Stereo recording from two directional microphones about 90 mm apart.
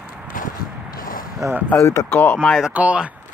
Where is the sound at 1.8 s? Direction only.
35° left (ahead or behind).